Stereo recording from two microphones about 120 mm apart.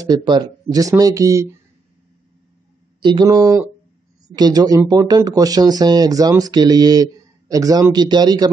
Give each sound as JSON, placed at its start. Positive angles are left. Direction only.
{"t": 0.0, "sound": "speech", "side_deg": -40}
{"t": 3.0, "sound": "speech", "side_deg": -40}